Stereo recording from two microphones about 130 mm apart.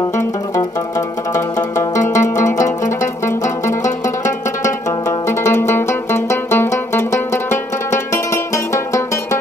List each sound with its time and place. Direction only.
0.2 s music: 25° left (ahead or behind)
3.8 s zither: 70° left (ahead or behind)
4.6 s zither: 25° left (ahead or behind)
5.6 s music: 20° left (ahead or behind)